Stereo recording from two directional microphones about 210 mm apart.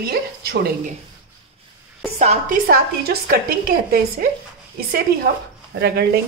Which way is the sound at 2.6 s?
45° right (ahead or behind).